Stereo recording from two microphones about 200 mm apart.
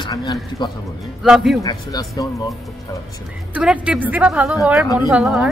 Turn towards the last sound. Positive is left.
turn(degrees=-5)  # may be behind; listen again after turning